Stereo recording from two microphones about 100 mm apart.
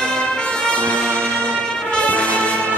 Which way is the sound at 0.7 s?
10° left (ahead or behind).